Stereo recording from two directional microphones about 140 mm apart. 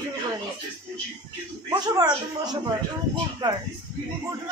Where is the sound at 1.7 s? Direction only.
30° right (ahead or behind).